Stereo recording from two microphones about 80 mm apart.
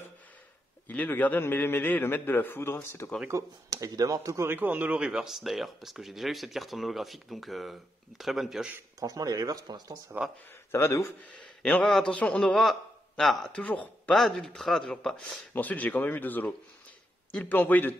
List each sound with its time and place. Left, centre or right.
0.8 s a man's voice: left
3.3 s speech: right
4.5 s speech: right; by 8.6 s centre
9.0 s speech: right
10.7 s a man's voice: left
11.2 s speech: centre
13.2 s speech: centre
13.5 s speech: centre
14.1 s a man's voice: centre; by 17.9 s left